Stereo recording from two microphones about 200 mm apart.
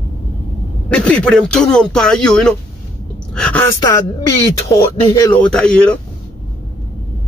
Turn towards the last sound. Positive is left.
turn(degrees=5)  # may be behind; listen again after turning